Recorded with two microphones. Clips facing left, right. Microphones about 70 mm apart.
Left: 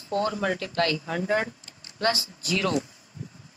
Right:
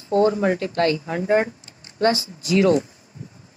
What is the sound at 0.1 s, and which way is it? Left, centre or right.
A woman's voice, right.